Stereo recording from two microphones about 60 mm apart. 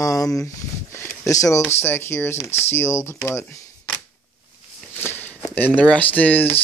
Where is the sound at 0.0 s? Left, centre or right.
Left.